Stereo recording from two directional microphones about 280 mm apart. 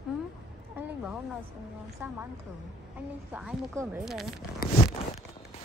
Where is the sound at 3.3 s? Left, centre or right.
Centre.